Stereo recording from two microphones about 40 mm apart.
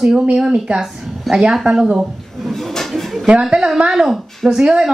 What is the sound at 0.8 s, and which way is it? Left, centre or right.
Speech, centre.